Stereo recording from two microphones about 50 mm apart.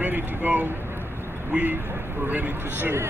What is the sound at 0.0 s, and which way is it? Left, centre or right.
Vehicle, right.